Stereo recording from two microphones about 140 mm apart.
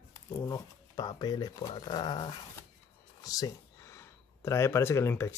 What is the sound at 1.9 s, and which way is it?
Dog, 30° left (ahead or behind).